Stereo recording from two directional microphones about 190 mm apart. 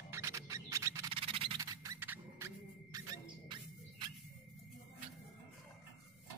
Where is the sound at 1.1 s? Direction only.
30° right (ahead or behind).